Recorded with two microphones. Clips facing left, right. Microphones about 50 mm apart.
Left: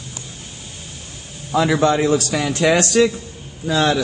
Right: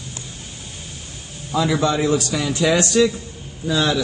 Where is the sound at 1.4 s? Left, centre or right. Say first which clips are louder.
Left 3 dB; left.